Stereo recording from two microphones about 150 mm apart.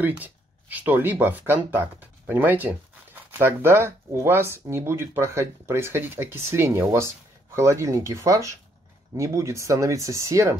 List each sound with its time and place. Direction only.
0.0 s speech: 10° right (ahead or behind)